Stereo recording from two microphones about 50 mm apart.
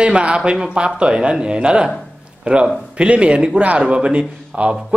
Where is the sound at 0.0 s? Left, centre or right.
Right.